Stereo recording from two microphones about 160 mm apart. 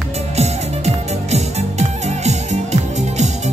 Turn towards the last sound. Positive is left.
turn(degrees=-45)  # may be behind; listen again after turning